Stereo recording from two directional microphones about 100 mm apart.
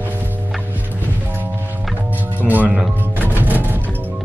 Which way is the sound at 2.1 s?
15° right (ahead or behind).